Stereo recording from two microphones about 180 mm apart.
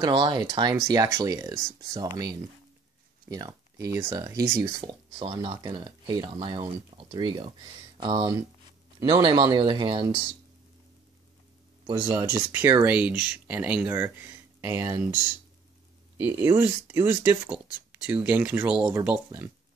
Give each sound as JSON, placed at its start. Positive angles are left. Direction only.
{"t": 0.0, "sound": "speech", "side_deg": -25}
{"t": 11.8, "sound": "speech", "side_deg": -15}
{"t": 16.2, "sound": "speech", "side_deg": -15}